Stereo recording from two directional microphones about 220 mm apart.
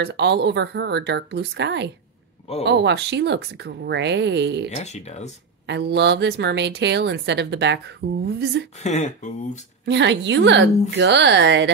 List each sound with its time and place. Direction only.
0.0 s speech: 50° right (ahead or behind)
4.6 s speech: 30° left (ahead or behind)
5.7 s speech: 50° right (ahead or behind)
8.7 s speech: 30° left (ahead or behind)
9.8 s a woman's voice: 55° right (ahead or behind)